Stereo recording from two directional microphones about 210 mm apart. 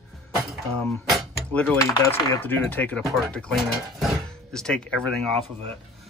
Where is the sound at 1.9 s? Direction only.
20° left (ahead or behind).